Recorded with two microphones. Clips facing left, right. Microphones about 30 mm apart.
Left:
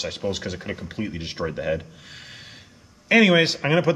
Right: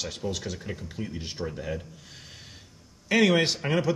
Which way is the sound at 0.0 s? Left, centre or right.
Left.